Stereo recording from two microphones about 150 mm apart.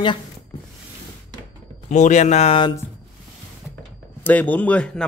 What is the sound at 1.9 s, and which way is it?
Speech, 55° left (ahead or behind).